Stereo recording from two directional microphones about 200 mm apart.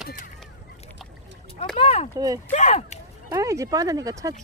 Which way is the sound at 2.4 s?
35° left (ahead or behind).